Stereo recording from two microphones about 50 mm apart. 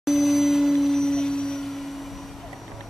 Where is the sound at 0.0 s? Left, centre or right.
Centre.